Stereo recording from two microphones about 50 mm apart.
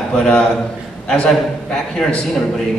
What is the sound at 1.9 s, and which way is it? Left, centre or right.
Speech, centre.